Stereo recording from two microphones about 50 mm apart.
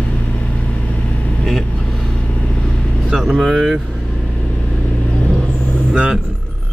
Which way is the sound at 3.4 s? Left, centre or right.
Centre.